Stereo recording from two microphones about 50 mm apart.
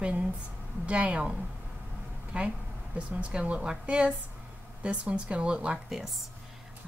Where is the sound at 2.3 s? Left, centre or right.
Right.